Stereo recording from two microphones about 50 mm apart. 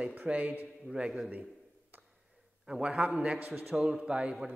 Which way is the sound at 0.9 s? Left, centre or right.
Centre.